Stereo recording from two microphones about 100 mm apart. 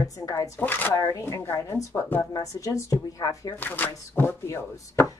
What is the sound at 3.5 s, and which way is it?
Speech, 20° left (ahead or behind).